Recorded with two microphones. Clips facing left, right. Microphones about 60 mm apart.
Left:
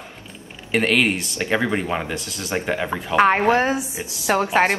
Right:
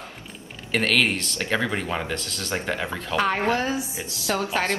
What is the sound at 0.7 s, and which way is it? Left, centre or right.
Speech, centre.